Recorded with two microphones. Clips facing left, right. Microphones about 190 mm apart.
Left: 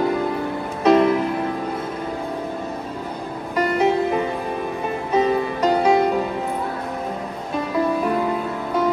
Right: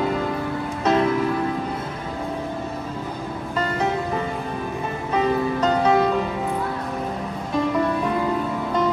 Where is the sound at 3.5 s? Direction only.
15° left (ahead or behind).